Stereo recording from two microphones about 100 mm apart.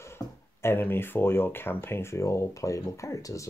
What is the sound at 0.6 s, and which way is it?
Speech, 25° left (ahead or behind).